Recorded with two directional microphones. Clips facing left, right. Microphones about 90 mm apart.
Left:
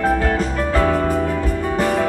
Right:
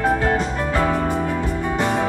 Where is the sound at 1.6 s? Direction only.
25° right (ahead or behind).